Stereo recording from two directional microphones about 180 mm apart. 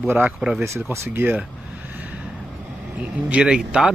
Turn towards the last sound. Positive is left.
turn(degrees=-5)  # may be behind; listen again after turning